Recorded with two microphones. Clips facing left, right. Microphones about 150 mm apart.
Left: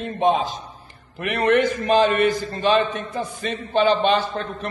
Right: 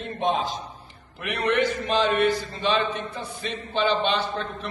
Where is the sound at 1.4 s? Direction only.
50° left (ahead or behind).